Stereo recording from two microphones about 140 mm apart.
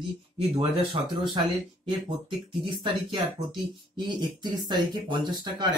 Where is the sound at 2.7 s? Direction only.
30° right (ahead or behind).